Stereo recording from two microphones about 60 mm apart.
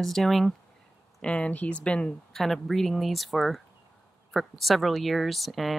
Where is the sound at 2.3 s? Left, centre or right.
Centre.